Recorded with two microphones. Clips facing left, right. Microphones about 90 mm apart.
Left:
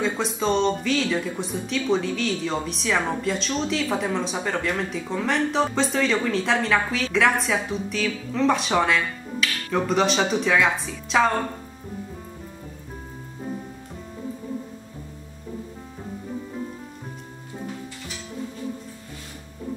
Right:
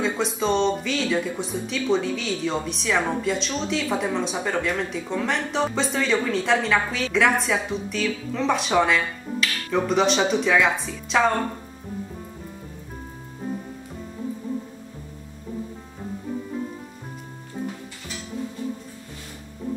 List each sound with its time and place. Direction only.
0.0 s speech: centre (ahead or behind)